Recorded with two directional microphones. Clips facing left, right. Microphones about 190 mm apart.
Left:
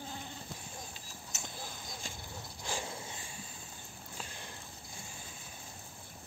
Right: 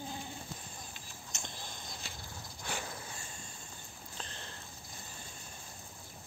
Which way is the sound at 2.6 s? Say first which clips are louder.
Left 1 dB; 25° left (ahead or behind).